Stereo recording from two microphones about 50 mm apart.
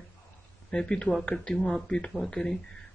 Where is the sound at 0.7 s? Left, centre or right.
Centre.